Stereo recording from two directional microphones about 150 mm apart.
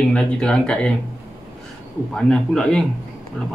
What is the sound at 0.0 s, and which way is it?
Speech, 5° left (ahead or behind).